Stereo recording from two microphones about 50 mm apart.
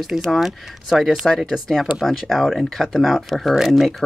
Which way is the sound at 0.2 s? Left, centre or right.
Centre.